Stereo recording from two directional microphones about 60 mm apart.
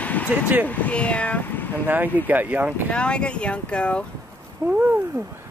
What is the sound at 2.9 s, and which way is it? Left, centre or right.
Speech, centre.